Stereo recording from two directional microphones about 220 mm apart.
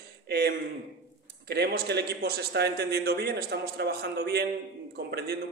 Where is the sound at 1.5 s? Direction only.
50° right (ahead or behind).